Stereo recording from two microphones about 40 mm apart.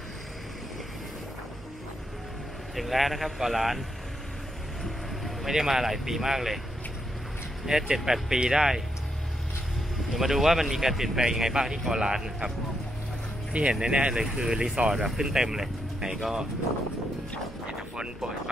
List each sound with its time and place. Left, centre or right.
2.7 s speech: centre
5.5 s speech: centre
7.6 s speech: centre
10.1 s speech: centre
13.5 s speech: right
14.2 s speech: centre